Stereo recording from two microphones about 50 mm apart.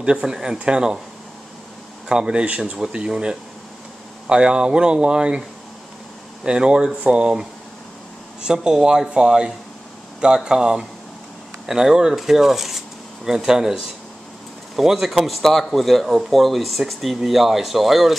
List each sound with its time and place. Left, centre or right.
0.0 s speech: centre
2.0 s speech: centre
6.4 s speech: centre
14.8 s speech: centre